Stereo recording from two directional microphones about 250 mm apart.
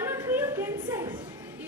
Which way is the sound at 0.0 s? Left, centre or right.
Centre.